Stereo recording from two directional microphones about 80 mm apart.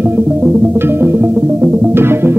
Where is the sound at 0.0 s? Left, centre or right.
Right.